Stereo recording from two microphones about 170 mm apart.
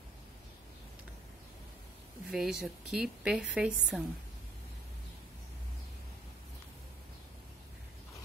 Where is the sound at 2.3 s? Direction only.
5° right (ahead or behind).